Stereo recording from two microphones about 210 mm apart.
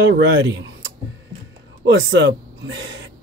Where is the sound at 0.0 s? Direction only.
60° right (ahead or behind).